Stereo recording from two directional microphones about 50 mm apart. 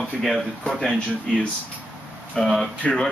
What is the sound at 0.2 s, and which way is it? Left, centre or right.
Speech, centre.